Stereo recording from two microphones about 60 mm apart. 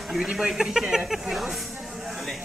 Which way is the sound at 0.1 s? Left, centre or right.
Centre.